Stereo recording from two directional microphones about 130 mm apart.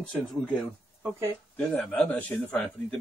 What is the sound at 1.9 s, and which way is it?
Speech, 5° left (ahead or behind).